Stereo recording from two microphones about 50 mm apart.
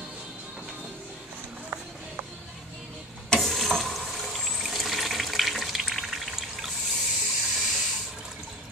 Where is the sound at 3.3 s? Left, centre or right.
Centre.